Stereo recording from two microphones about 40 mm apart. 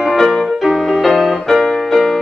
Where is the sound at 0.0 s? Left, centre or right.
Centre.